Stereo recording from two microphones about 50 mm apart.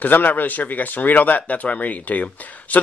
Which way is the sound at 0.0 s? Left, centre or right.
Left.